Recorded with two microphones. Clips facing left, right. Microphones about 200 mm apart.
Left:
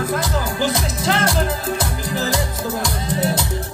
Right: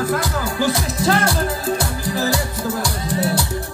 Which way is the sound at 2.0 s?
20° left (ahead or behind).